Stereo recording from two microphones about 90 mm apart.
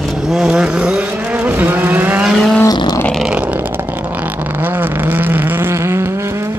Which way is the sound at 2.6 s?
45° left (ahead or behind).